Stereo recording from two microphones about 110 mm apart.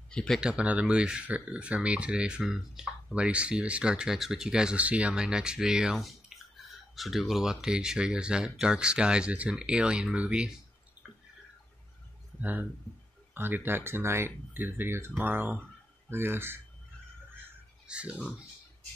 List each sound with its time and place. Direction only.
0.1 s speech: 5° left (ahead or behind)
0.4 s speech: 10° right (ahead or behind)
12.4 s speech: 15° right (ahead or behind)
17.8 s speech: 10° right (ahead or behind)